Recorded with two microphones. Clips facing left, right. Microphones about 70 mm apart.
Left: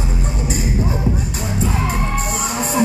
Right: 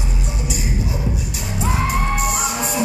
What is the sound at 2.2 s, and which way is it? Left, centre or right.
Music, left.